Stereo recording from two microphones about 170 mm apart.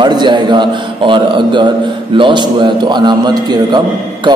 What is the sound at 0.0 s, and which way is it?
A man's voice, 25° right (ahead or behind).